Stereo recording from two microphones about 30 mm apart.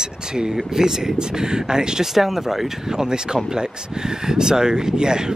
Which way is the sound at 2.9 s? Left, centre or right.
Right.